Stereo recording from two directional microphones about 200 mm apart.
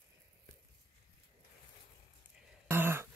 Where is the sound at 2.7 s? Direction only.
10° right (ahead or behind).